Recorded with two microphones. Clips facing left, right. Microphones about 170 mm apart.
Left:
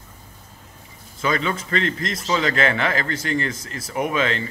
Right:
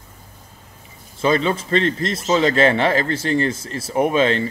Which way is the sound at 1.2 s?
30° right (ahead or behind).